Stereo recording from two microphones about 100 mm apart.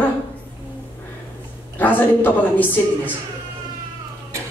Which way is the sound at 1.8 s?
20° left (ahead or behind).